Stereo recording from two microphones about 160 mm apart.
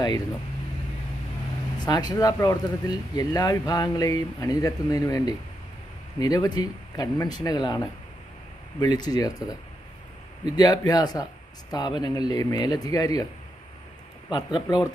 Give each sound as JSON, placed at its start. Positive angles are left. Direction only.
{"t": 1.8, "sound": "speech", "side_deg": 25}
{"t": 14.3, "sound": "speech", "side_deg": 25}